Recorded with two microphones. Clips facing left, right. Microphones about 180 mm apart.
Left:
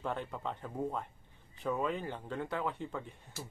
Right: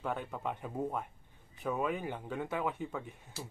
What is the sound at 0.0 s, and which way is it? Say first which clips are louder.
Speech: right 1 dB; 5° right (ahead or behind).